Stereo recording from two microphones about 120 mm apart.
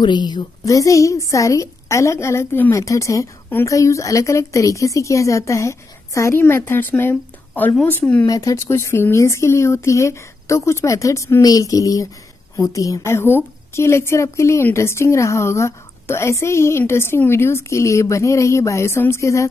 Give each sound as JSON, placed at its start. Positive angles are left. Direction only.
{"t": 0.0, "sound": "a woman's voice", "side_deg": 40}
{"t": 8.3, "sound": "a woman's voice", "side_deg": 30}